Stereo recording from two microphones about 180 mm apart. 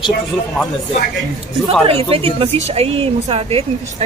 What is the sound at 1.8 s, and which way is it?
Speech, 30° right (ahead or behind).